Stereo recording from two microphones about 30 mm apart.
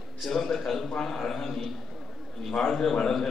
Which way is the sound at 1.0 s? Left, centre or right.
Centre.